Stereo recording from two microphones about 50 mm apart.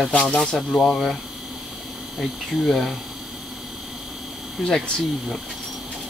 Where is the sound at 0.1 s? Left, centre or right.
Left.